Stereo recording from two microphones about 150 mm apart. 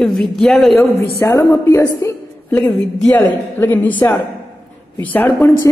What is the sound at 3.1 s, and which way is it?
A man's voice, 10° left (ahead or behind).